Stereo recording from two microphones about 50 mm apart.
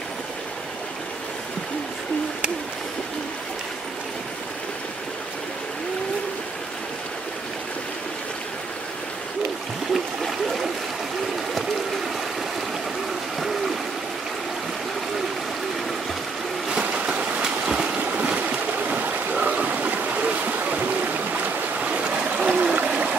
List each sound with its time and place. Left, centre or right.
9.9 s stream: centre
16.8 s a sound: centre
18.0 s stream: right